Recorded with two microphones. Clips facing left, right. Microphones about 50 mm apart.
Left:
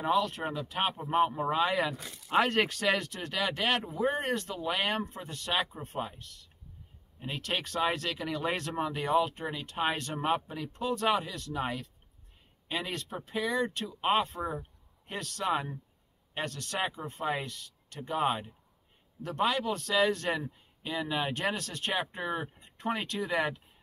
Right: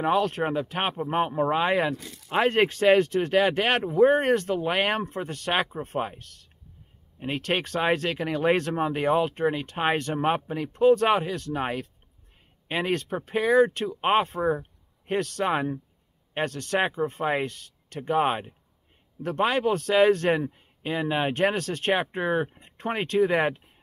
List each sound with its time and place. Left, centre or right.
0.0 s speech: right
2.2 s speech: right